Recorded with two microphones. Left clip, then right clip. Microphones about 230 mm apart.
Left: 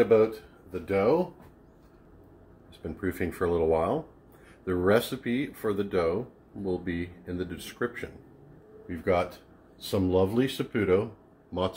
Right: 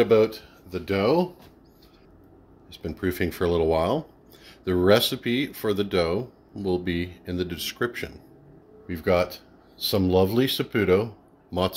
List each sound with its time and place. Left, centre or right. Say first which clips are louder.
0.0 s speech: right 2 dB; right
2.8 s speech: right 5 dB; right